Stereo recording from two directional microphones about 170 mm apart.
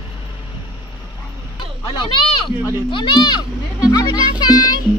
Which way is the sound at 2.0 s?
30° left (ahead or behind).